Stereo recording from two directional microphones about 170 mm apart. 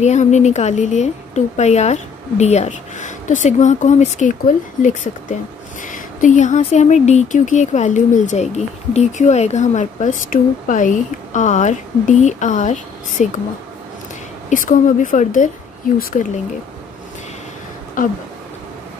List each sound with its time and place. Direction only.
0.0 s a woman's voice: 45° left (ahead or behind)
14.5 s a woman's voice: 50° left (ahead or behind)
18.0 s a sound: 50° left (ahead or behind)